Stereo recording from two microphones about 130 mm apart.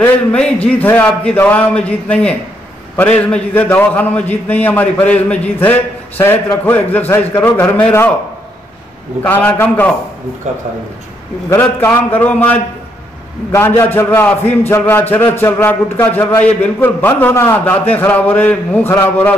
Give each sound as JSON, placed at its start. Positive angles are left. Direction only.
{"t": 0.0, "sound": "a man's voice", "side_deg": 10}
{"t": 9.2, "sound": "a man's voice", "side_deg": 15}
{"t": 11.9, "sound": "a man's voice", "side_deg": 15}